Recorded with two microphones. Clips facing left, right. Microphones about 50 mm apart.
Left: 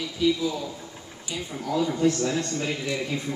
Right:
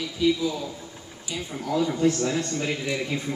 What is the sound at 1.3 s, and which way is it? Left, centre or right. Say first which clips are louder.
Speech: right 1 dB; centre.